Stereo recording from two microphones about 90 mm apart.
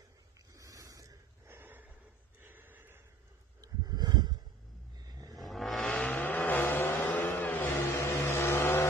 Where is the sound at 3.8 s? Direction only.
50° right (ahead or behind).